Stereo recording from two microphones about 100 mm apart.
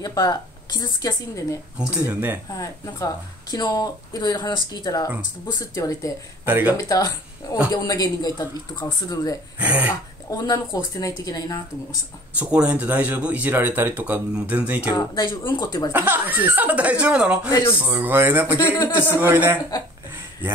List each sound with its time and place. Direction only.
0.0 s speech: 45° left (ahead or behind)
2.0 s speech: 20° right (ahead or behind)
2.5 s speech: 35° left (ahead or behind)
5.6 s speech: 35° left (ahead or behind)
6.4 s speech: 20° right (ahead or behind)
6.8 s speech: 35° left (ahead or behind)
9.6 s speech: 15° right (ahead or behind)
10.3 s speech: 40° left (ahead or behind)
12.4 s speech: 10° right (ahead or behind)
15.0 s speech: 45° left (ahead or behind)
15.9 s speech: 20° right (ahead or behind)
18.7 s speech: 20° left (ahead or behind)
19.1 s speech: 20° right (ahead or behind)